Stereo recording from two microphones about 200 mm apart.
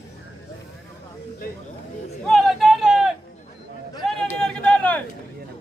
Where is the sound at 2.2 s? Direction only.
Centre (ahead or behind).